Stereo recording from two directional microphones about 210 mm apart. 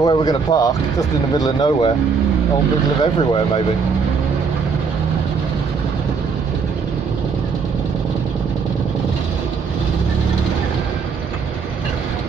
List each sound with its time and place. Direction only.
0.0 s speech: 20° left (ahead or behind)
3.0 s speech: 25° left (ahead or behind)